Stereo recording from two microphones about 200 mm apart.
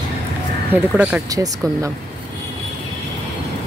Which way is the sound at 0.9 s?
5° right (ahead or behind).